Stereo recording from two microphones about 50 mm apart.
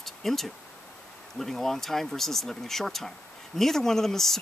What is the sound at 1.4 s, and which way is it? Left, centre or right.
Speech, centre.